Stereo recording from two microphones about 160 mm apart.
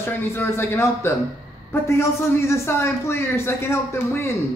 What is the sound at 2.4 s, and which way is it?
A man's voice, 15° left (ahead or behind).